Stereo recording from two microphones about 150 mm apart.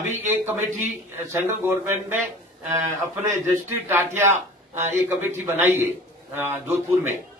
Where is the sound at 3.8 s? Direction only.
15° right (ahead or behind).